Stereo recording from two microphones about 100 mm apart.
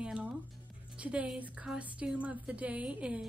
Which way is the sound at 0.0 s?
10° right (ahead or behind).